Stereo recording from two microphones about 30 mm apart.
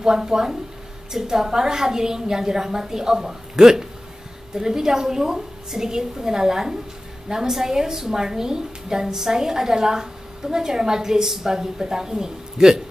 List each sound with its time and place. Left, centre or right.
0.0 s a woman's voice: right